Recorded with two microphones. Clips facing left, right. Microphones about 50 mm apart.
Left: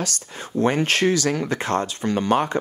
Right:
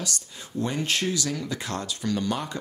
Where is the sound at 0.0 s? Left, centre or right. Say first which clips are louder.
Left 5 dB; left.